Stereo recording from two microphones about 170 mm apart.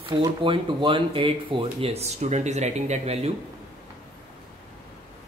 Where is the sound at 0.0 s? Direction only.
30° right (ahead or behind).